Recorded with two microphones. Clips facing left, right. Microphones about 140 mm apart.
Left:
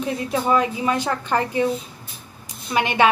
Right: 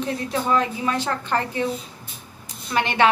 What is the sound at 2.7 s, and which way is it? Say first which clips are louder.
Speech: left 1 dB; 15° left (ahead or behind).